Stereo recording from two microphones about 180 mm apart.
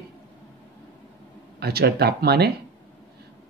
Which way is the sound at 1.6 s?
60° right (ahead or behind).